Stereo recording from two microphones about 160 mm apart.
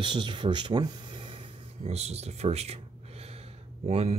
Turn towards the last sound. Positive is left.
turn(degrees=-40)  # may be behind; listen again after turning